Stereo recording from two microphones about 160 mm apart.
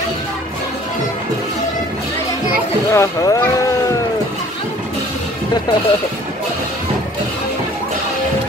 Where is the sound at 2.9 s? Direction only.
20° left (ahead or behind).